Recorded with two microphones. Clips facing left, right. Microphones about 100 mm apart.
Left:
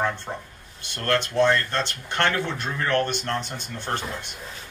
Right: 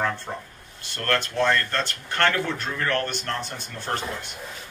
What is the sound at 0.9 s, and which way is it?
Speech, 20° left (ahead or behind).